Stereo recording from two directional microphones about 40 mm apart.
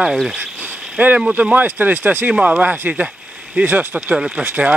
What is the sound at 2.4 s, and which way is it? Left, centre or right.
Speech, right.